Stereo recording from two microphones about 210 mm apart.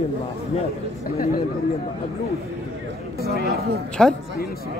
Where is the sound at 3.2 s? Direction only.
50° right (ahead or behind).